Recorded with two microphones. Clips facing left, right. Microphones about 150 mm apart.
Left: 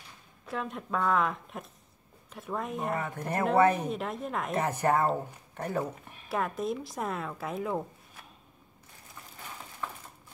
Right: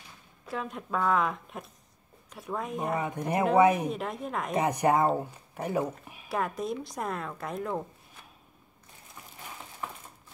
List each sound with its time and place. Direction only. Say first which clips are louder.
0.5 s speech: even; centre (ahead or behind)
3.0 s speech: right 3 dB; 15° right (ahead or behind)
3.9 s speech: even; centre (ahead or behind)
4.6 s speech: right 3 dB; 15° right (ahead or behind); by 7.8 s 5° left (ahead or behind)